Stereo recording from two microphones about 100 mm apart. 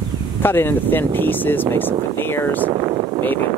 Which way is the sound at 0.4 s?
20° left (ahead or behind).